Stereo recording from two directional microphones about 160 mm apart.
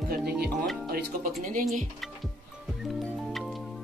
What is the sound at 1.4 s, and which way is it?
Speech, 60° right (ahead or behind).